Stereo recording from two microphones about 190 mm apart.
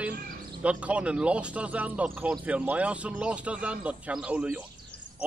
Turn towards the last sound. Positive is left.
turn(degrees=-5)  # may be behind; listen again after turning